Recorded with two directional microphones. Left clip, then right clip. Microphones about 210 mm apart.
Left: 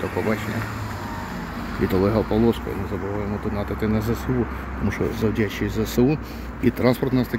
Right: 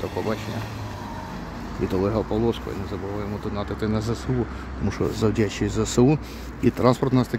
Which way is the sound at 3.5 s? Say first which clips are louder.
Left 1 dB; 5° right (ahead or behind).